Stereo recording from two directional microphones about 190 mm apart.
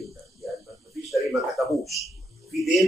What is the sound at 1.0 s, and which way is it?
A man's voice, centre (ahead or behind).